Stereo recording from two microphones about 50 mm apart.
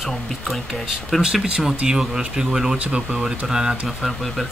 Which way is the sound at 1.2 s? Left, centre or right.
Centre.